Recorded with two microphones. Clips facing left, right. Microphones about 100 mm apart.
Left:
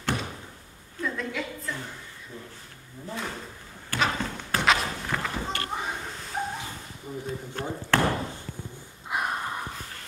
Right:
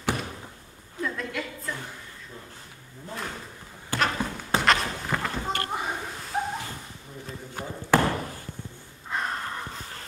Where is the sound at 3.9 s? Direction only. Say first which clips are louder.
Right 1 dB; 20° right (ahead or behind).